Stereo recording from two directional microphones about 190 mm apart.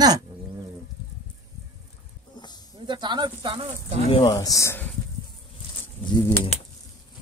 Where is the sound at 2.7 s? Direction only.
25° right (ahead or behind).